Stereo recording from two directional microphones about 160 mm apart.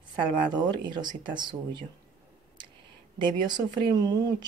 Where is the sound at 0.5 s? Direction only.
30° right (ahead or behind).